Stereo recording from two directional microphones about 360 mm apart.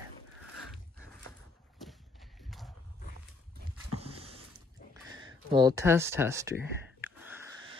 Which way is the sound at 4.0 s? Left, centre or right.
Centre.